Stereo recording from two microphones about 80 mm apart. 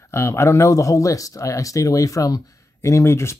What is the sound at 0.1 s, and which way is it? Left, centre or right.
Speech, left.